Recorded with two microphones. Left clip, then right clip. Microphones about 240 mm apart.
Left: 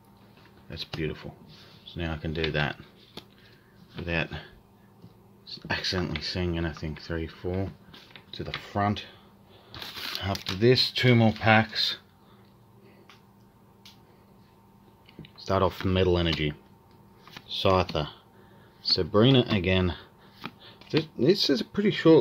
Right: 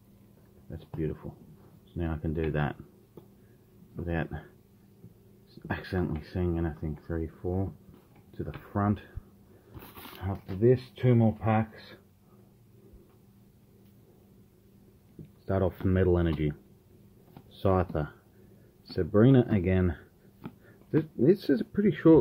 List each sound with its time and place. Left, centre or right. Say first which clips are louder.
0.7 s speech: left 3 dB; centre
4.0 s speech: left 4 dB; centre
5.7 s speech: left 4 dB; centre
10.3 s speech: left 3 dB; centre
15.4 s speech: left 4 dB; centre